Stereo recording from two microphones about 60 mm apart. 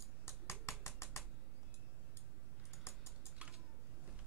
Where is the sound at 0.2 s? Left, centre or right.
Left.